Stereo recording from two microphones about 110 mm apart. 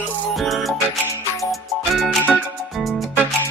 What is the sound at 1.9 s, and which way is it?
Music, centre (ahead or behind).